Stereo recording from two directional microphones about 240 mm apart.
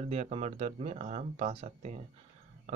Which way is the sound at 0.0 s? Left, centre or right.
Right.